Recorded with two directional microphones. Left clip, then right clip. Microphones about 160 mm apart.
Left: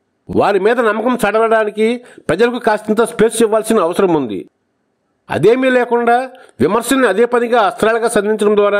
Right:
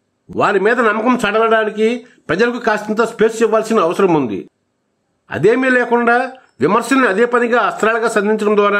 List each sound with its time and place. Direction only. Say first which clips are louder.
0.4 s speech: left 1 dB; 30° left (ahead or behind)
1.3 s a man's voice: left 2 dB; 35° left (ahead or behind)